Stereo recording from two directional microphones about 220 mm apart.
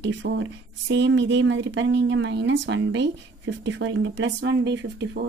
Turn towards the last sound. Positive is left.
turn(degrees=-50)  # may be behind; listen again after turning